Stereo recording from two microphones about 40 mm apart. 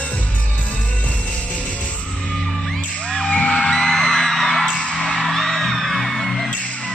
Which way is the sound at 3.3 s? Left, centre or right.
Left.